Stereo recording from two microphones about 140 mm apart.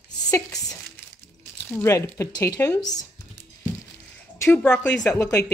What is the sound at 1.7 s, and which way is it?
Speech, 20° left (ahead or behind).